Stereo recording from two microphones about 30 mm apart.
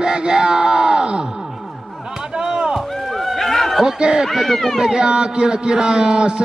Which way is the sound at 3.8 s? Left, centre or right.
Right.